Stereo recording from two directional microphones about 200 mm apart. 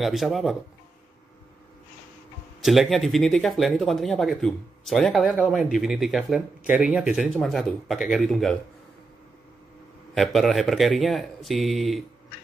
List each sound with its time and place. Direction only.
0.0 s speech: centre (ahead or behind)
2.6 s speech: centre (ahead or behind)
10.1 s speech: centre (ahead or behind)